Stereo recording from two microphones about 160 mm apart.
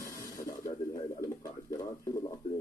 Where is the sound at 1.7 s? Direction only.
20° left (ahead or behind).